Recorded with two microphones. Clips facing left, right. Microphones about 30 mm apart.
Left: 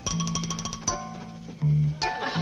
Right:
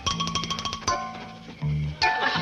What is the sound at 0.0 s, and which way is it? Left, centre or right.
Music, right.